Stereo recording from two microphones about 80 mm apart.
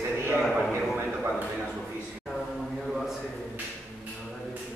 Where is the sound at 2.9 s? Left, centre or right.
Centre.